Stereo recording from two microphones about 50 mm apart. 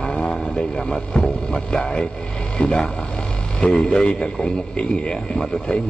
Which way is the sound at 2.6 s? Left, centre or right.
Centre.